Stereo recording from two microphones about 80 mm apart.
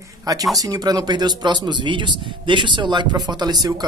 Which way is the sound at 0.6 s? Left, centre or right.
Right.